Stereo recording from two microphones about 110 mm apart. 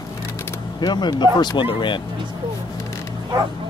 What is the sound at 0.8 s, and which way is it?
Speech, 40° left (ahead or behind).